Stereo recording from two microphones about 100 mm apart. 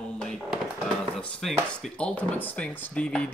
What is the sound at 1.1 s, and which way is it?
Speech, 5° left (ahead or behind).